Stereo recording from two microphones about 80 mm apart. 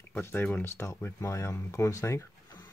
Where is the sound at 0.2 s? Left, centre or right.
Left.